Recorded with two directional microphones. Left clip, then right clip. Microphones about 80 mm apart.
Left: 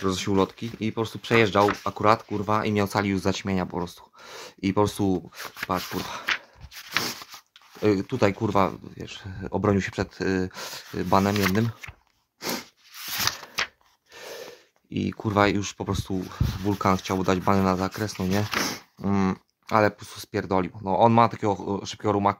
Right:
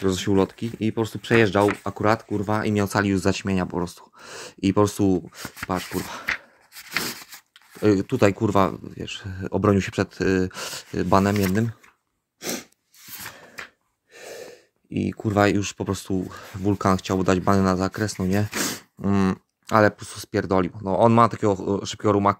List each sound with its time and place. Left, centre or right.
0.0 s speech: centre
2.9 s speech: right
4.9 s speech: right
6.9 s a sound: centre
7.8 s speech: right
8.1 s speech: right
12.4 s sneeze: centre
14.1 s a sound: centre
15.3 s speech: centre
18.5 s speech: centre
19.6 s speech: right